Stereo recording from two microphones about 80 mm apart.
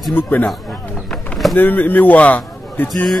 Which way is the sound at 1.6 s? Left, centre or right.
Left.